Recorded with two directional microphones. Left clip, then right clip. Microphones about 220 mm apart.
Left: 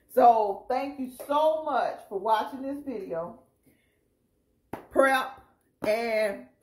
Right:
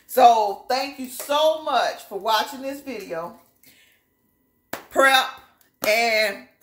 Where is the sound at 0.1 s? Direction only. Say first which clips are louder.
Right 5 dB; 5° right (ahead or behind).